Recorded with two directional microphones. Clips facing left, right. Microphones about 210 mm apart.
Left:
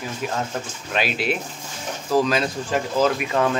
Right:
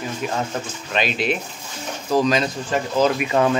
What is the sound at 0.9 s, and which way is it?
Speech, 5° left (ahead or behind).